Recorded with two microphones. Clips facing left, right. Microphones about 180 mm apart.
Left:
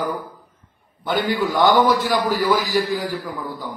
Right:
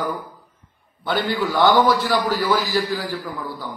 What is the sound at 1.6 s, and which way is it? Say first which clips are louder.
A man's voice: even; 20° left (ahead or behind).